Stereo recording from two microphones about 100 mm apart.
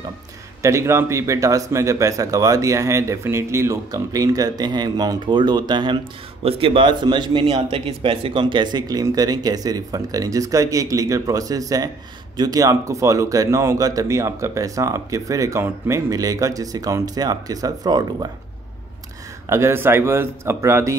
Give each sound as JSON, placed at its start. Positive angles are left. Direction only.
{"t": 0.6, "sound": "speech", "side_deg": -30}
{"t": 6.4, "sound": "speech", "side_deg": -60}
{"t": 7.7, "sound": "speech", "side_deg": -65}
{"t": 8.8, "sound": "speech", "side_deg": -40}
{"t": 19.5, "sound": "a man's voice", "side_deg": -25}